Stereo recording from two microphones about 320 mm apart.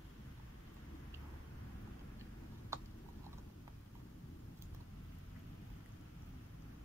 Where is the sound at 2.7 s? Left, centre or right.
Centre.